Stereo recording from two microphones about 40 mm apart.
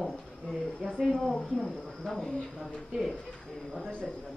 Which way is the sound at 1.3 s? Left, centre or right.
Centre.